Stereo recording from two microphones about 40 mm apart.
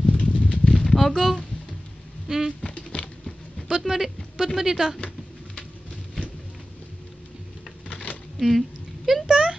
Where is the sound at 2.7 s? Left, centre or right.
Left.